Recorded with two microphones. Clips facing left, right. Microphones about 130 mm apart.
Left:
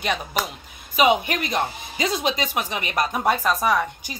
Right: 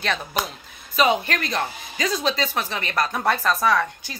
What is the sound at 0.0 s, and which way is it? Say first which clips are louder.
A woman's voice: left 1 dB; 10° left (ahead or behind).